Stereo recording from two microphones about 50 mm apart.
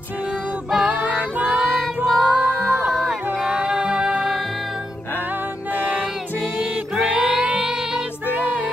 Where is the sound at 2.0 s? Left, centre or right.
Centre.